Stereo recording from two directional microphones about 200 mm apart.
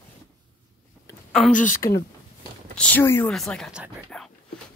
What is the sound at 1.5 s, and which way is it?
Speech, 40° left (ahead or behind).